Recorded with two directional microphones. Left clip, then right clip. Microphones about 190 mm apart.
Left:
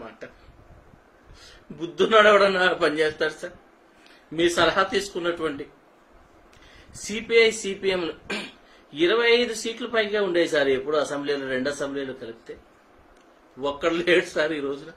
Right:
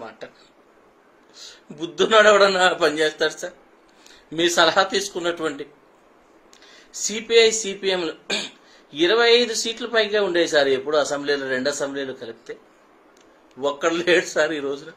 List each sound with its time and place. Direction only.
1.5 s a man's voice: centre (ahead or behind)
6.9 s a man's voice: 5° left (ahead or behind)
13.6 s a man's voice: centre (ahead or behind)